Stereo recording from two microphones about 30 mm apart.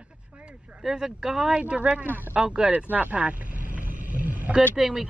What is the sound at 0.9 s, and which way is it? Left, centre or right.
Speech, right.